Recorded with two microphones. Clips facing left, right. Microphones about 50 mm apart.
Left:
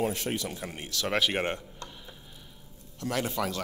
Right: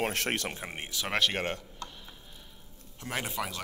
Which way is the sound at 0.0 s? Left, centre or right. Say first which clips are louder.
Left 1 dB; right.